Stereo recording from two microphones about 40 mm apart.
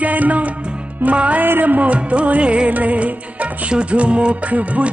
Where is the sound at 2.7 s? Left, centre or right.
Right.